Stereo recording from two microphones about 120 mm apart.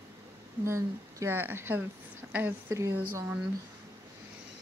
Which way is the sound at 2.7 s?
25° right (ahead or behind).